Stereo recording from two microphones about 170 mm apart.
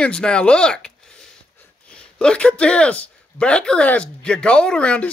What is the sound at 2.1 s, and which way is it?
Speech, 5° left (ahead or behind).